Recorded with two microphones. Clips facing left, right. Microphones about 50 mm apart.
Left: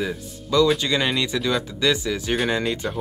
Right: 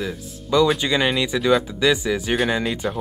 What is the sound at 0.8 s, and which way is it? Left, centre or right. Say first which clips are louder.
Speech: right 2 dB; centre.